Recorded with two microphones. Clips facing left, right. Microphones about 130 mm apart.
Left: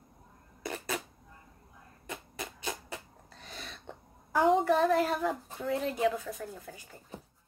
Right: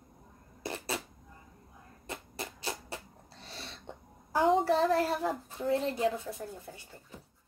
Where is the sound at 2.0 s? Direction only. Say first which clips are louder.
Even; 35° right (ahead or behind).